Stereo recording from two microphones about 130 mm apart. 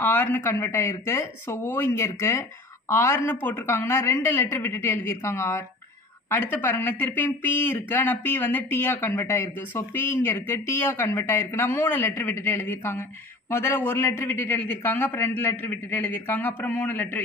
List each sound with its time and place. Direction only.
0.0 s a woman's voice: 15° left (ahead or behind)